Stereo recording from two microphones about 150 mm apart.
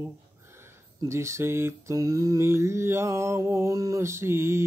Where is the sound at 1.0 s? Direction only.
20° right (ahead or behind).